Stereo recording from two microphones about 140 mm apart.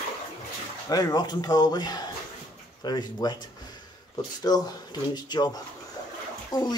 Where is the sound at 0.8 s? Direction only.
25° left (ahead or behind).